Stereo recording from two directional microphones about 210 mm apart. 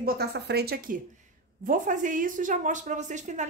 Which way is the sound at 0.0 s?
50° right (ahead or behind).